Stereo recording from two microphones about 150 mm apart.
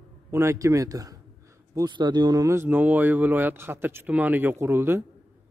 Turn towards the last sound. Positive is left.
turn(degrees=-15)  # may be behind; listen again after turning